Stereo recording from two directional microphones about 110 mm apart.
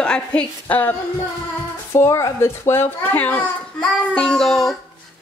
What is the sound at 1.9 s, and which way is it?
A child's voice, 25° left (ahead or behind).